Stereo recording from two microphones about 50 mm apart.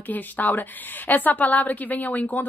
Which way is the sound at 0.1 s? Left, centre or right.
Left.